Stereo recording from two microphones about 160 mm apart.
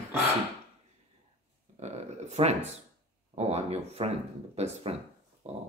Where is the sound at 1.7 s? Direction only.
45° right (ahead or behind).